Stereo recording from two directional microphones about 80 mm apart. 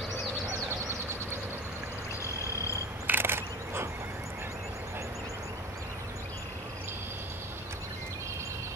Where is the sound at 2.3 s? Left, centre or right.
Left.